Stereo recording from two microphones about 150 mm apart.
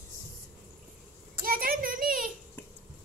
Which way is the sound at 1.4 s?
75° right (ahead or behind).